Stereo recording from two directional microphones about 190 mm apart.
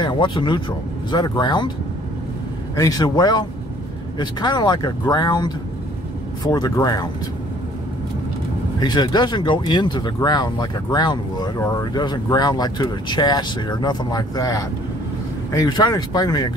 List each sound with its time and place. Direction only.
0.0 s speech: 25° left (ahead or behind)
2.7 s speech: 20° left (ahead or behind)
8.7 s speech: 20° left (ahead or behind)